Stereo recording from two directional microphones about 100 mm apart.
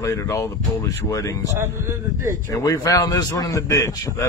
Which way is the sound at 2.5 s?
35° left (ahead or behind).